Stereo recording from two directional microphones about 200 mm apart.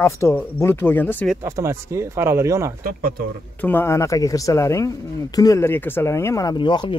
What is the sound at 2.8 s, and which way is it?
Speech, 45° right (ahead or behind).